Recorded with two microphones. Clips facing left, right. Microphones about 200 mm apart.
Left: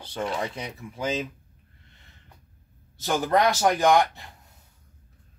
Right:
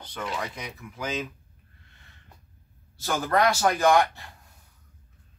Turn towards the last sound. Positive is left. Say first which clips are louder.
# left 1 dB
turn(degrees=20)  # may be behind; listen again after turning